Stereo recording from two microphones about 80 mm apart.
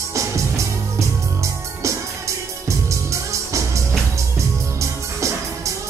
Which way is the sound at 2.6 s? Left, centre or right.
Right.